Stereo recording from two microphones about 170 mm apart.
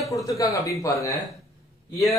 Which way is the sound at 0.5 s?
20° left (ahead or behind).